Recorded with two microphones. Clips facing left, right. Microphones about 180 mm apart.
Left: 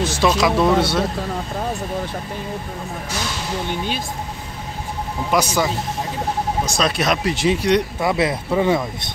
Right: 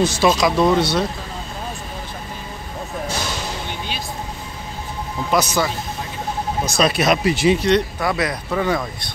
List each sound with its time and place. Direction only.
0.0 s speech: 5° right (ahead or behind)
0.4 s speech: 5° left (ahead or behind)
5.3 s speech: 10° left (ahead or behind)
6.8 s speech: 5° right (ahead or behind)
7.5 s speech: 10° left (ahead or behind)
8.0 s speech: 25° left (ahead or behind)